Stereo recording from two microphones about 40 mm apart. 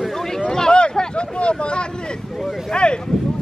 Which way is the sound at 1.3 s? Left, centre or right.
Left.